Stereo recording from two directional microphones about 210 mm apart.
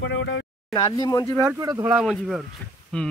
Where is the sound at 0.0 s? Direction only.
65° left (ahead or behind).